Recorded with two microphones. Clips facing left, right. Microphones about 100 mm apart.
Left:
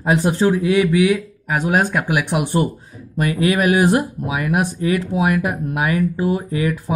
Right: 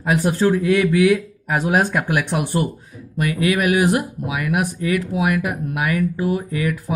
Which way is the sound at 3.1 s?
30° left (ahead or behind).